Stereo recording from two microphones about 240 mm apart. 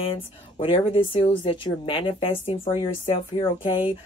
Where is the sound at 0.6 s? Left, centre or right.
Left.